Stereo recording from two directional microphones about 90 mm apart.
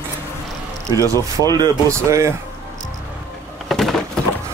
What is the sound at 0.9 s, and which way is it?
Speech, 40° right (ahead or behind).